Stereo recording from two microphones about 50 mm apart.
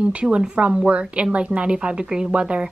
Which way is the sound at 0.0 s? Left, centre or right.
Right.